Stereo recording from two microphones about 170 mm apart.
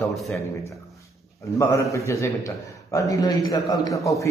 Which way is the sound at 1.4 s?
15° left (ahead or behind).